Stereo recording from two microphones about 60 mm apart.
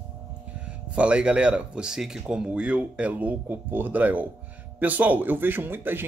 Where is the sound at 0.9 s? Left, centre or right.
Centre.